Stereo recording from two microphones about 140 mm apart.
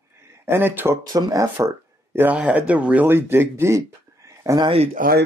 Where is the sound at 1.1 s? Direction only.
25° right (ahead or behind).